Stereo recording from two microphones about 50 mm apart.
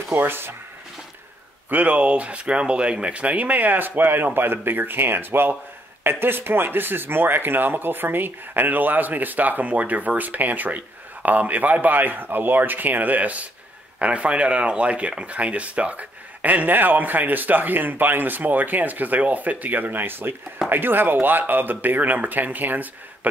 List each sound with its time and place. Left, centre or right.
0.1 s speech: right
1.7 s speech: right